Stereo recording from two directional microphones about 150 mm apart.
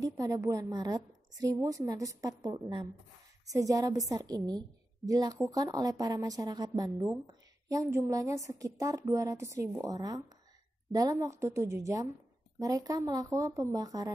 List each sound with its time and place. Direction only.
0.0 s a woman's voice: 25° right (ahead or behind)